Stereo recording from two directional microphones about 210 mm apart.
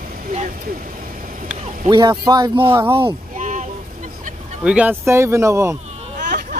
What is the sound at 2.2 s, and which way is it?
Speech, 20° right (ahead or behind).